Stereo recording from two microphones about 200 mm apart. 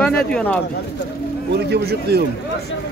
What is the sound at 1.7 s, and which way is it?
Speech, 55° right (ahead or behind).